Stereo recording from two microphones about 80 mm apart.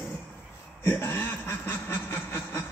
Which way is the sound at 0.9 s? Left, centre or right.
Left.